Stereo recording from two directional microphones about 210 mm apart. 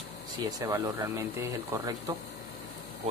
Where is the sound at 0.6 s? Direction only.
10° right (ahead or behind).